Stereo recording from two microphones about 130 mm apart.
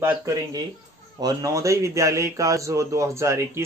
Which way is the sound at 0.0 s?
25° right (ahead or behind).